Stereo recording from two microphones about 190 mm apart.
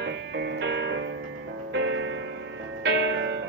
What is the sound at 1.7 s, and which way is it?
Music, 85° right.